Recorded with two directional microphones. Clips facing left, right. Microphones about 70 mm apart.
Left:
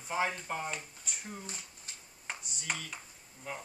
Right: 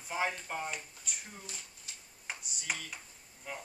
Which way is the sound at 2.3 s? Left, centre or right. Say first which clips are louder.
Left 1 dB; centre.